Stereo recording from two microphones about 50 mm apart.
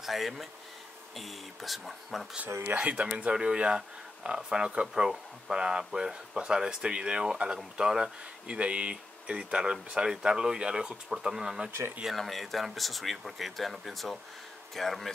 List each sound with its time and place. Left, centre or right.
0.0 s speech: centre
2.8 s speech: right
12.2 s speech: centre